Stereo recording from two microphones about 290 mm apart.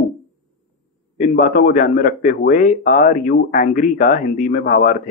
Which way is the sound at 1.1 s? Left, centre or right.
Left.